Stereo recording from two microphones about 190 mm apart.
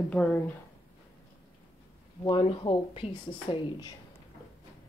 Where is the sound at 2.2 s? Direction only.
25° left (ahead or behind).